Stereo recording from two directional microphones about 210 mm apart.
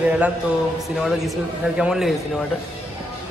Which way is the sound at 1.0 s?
Centre (ahead or behind).